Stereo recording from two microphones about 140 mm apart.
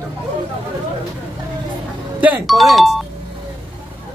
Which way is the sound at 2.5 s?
Centre (ahead or behind).